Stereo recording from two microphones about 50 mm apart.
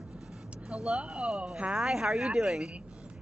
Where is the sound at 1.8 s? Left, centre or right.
Centre.